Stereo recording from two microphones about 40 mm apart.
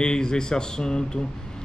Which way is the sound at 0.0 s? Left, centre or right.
Centre.